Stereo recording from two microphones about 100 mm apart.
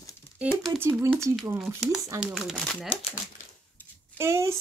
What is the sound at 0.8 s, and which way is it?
Speech, 25° right (ahead or behind).